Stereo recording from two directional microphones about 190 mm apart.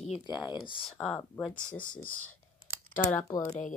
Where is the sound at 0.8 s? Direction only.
5° left (ahead or behind).